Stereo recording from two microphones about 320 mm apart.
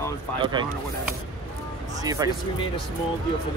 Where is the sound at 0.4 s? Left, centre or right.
Centre.